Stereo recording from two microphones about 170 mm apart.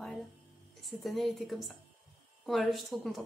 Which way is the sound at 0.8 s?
Centre (ahead or behind).